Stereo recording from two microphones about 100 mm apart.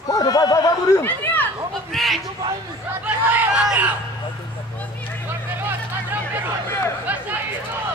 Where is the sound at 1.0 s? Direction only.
20° left (ahead or behind).